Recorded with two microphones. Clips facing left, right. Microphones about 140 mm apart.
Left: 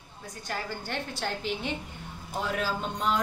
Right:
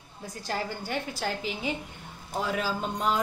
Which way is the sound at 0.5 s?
25° right (ahead or behind).